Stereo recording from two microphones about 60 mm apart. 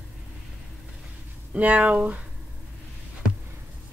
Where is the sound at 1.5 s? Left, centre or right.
Right.